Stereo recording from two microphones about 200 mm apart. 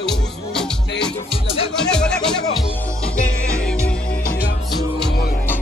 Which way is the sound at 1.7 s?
5° left (ahead or behind).